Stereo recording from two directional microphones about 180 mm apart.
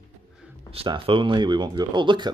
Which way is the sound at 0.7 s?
30° right (ahead or behind).